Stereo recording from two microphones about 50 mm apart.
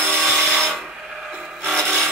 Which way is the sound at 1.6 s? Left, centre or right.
Centre.